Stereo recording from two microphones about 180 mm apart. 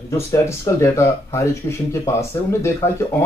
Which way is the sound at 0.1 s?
15° left (ahead or behind).